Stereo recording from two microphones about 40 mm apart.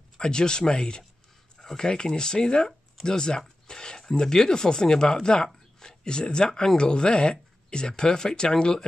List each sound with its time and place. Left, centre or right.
0.2 s speech: centre